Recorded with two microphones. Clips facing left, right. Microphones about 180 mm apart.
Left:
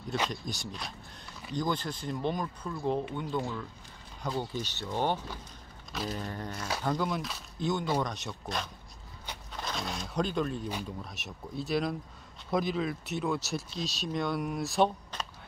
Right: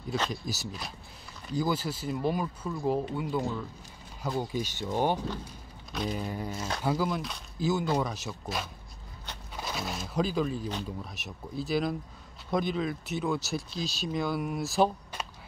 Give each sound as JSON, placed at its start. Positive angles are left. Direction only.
{"t": 0.3, "sound": "speech", "side_deg": -5}
{"t": 5.9, "sound": "speech", "side_deg": 0}